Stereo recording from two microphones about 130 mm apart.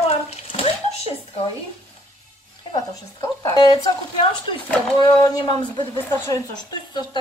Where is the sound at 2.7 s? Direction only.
25° left (ahead or behind).